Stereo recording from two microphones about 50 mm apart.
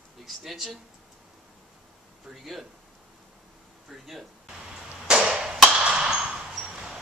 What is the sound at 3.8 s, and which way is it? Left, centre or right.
Speech, centre.